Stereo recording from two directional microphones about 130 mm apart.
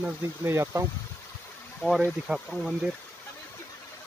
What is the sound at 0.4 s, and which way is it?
Speech, 20° right (ahead or behind).